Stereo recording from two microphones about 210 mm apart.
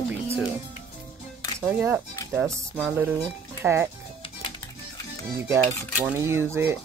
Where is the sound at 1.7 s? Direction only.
10° right (ahead or behind).